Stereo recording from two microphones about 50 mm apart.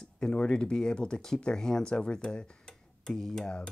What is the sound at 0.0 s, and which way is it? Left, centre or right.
Speech, centre.